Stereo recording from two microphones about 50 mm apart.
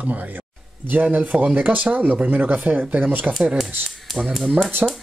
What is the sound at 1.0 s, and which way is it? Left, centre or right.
Speech, right.